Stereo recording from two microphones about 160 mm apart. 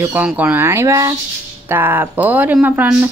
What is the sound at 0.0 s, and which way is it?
Speech, 10° right (ahead or behind).